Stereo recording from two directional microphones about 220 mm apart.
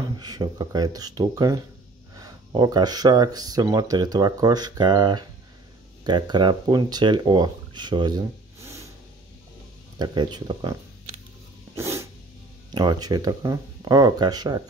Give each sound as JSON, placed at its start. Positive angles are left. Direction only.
{"t": 0.2, "sound": "speech", "side_deg": -15}
{"t": 8.5, "sound": "a sound", "side_deg": -10}
{"t": 9.9, "sound": "speech", "side_deg": -20}
{"t": 11.7, "sound": "dog", "side_deg": -10}
{"t": 12.7, "sound": "speech", "side_deg": -20}